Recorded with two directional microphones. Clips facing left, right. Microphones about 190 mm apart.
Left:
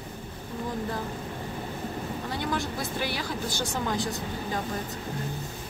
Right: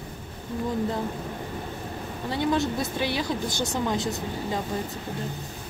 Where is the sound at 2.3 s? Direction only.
20° right (ahead or behind).